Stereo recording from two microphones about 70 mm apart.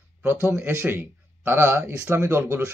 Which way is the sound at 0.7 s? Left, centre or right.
Right.